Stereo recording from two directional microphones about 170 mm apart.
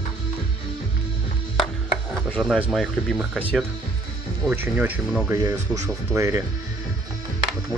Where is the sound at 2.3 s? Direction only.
5° left (ahead or behind); by 6.4 s 15° right (ahead or behind).